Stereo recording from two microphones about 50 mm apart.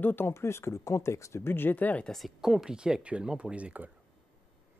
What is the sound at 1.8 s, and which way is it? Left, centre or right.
Speech, left.